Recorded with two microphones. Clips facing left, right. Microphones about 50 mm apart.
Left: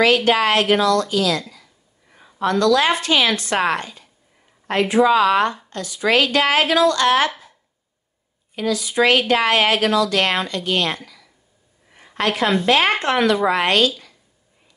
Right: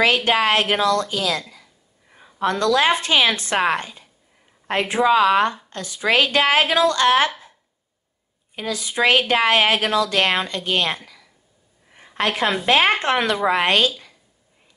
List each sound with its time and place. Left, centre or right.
0.0 s a woman's voice: right
5.7 s a woman's voice: right
8.5 s a woman's voice: right
11.9 s a sound: centre
12.6 s a woman's voice: right